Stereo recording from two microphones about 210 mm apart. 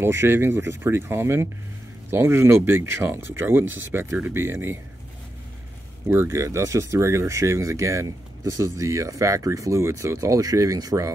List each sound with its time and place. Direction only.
0.0 s speech: 10° right (ahead or behind)
6.0 s speech: 10° right (ahead or behind)